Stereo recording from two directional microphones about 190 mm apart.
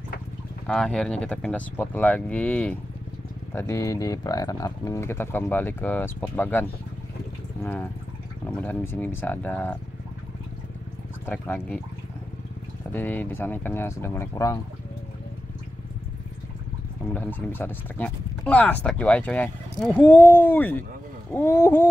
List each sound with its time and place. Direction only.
0.7 s speech: 5° left (ahead or behind)
7.6 s speech: 10° left (ahead or behind)
11.2 s speech: 10° left (ahead or behind)
12.9 s speech: 10° left (ahead or behind)
17.1 s speech: 10° left (ahead or behind)